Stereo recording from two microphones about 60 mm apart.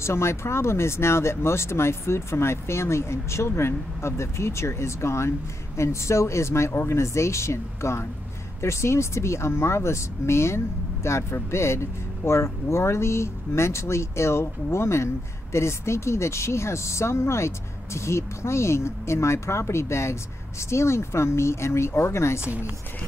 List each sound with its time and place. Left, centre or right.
0.0 s speech: left